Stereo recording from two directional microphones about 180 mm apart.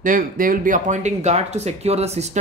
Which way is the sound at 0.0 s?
50° right (ahead or behind).